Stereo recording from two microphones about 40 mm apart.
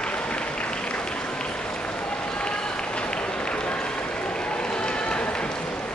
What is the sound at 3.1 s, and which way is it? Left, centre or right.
Applause, left.